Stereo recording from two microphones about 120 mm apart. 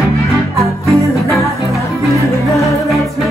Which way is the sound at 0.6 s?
25° right (ahead or behind).